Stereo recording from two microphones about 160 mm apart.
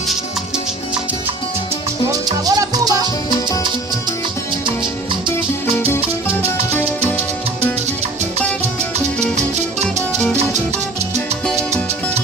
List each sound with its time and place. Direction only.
2.0 s music: 20° right (ahead or behind)